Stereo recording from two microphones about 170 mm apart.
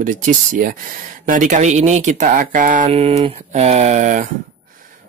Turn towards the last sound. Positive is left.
turn(degrees=-50)  # may be behind; listen again after turning